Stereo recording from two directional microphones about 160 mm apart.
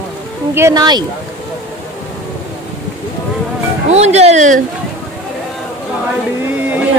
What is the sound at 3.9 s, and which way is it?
Speech, 45° right (ahead or behind).